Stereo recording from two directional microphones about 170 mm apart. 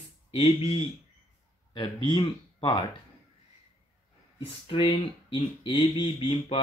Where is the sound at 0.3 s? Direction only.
35° left (ahead or behind).